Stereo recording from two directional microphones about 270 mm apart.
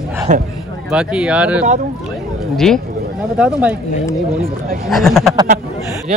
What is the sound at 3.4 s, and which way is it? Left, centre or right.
Speech, centre.